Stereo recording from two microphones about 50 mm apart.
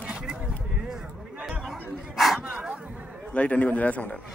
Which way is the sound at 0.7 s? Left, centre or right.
Centre.